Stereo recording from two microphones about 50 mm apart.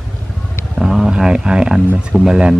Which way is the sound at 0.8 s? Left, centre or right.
Centre.